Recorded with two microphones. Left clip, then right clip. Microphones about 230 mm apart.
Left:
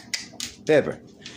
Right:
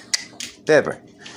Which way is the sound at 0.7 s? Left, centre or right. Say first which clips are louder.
Right 4 dB; centre.